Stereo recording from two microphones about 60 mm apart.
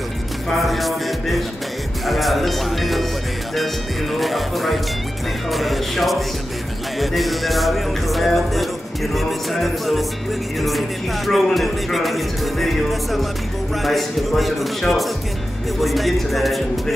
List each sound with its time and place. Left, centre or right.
0.5 s music: centre
4.1 s music: centre